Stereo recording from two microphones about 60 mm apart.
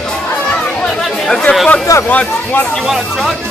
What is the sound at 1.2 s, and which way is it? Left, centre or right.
Speech, centre.